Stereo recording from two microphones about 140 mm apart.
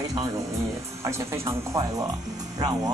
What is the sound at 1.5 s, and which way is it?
Music, 25° right (ahead or behind).